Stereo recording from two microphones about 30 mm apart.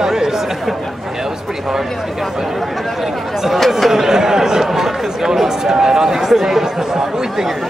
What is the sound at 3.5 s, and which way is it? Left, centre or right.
Chatter, centre.